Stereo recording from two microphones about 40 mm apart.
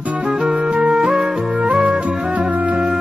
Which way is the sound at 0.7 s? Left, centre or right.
Right.